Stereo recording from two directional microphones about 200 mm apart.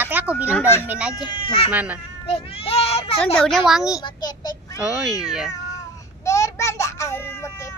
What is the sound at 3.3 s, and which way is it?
Speech, centre (ahead or behind).